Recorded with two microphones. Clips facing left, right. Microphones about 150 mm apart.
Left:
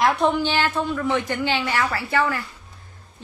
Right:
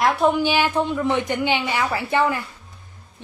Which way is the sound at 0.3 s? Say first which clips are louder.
Right 2 dB; 10° right (ahead or behind).